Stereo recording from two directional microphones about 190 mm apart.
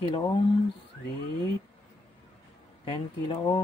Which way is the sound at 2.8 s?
25° left (ahead or behind).